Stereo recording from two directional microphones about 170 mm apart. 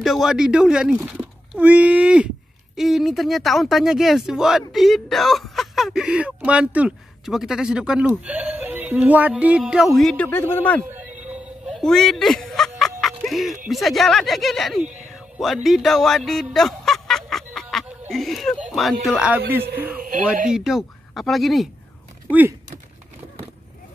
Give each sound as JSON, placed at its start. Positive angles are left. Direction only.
{"t": 0.0, "sound": "speech", "side_deg": 0}
{"t": 8.2, "sound": "a sound", "side_deg": -10}
{"t": 10.2, "sound": "a man's voice", "side_deg": 10}
{"t": 10.8, "sound": "a sound", "side_deg": -10}
{"t": 11.2, "sound": "music", "side_deg": -5}
{"t": 13.2, "sound": "speech", "side_deg": 0}
{"t": 14.9, "sound": "music", "side_deg": -45}
{"t": 15.1, "sound": "speech", "side_deg": 0}
{"t": 16.5, "sound": "snicker", "side_deg": 0}
{"t": 19.5, "sound": "a sound", "side_deg": -10}
{"t": 20.0, "sound": "radio", "side_deg": -55}
{"t": 20.4, "sound": "speech", "side_deg": -5}
{"t": 22.3, "sound": "a sound", "side_deg": -10}